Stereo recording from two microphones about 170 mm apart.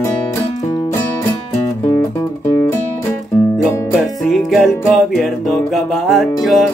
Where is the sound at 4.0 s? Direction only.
Centre (ahead or behind).